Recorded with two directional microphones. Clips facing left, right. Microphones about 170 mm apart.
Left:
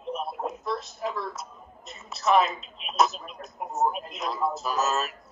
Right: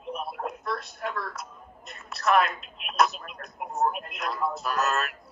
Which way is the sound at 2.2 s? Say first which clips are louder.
Left 1 dB; centre (ahead or behind).